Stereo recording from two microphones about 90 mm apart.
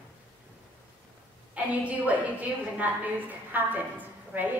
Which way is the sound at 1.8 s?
15° right (ahead or behind).